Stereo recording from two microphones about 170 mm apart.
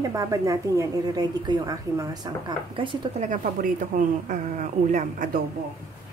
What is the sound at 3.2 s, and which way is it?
Speech, 50° right (ahead or behind).